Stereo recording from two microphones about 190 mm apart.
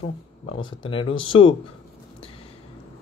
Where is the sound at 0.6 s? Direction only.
25° left (ahead or behind).